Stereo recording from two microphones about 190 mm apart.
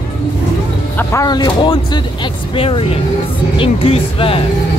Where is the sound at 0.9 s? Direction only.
15° left (ahead or behind).